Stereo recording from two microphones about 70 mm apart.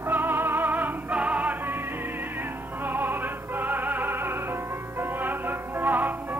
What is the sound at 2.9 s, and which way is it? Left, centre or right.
Music, right.